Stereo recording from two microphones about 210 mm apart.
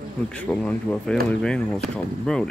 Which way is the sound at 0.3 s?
5° left (ahead or behind).